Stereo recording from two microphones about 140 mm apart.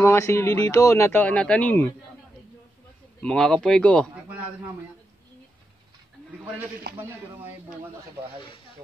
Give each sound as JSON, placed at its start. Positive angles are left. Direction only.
{"t": 0.0, "sound": "speech", "side_deg": 20}
{"t": 3.2, "sound": "speech", "side_deg": 5}
{"t": 6.8, "sound": "a man's voice", "side_deg": -90}